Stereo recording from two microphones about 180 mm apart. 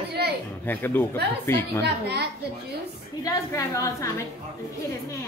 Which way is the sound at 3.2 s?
20° left (ahead or behind).